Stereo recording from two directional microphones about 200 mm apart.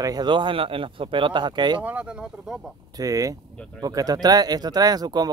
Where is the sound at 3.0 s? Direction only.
15° right (ahead or behind).